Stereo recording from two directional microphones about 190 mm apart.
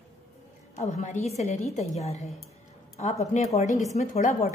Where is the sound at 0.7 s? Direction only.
35° left (ahead or behind).